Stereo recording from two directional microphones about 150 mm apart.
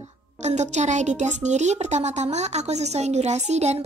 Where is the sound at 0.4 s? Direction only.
50° right (ahead or behind).